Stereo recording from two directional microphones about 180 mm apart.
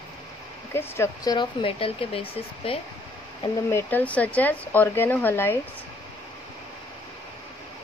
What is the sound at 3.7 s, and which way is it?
Speech, 10° left (ahead or behind).